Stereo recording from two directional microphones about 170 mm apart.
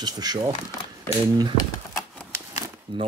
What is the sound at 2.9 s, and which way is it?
Speech, 30° right (ahead or behind).